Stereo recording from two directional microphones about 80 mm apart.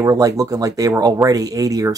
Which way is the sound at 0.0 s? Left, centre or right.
Right.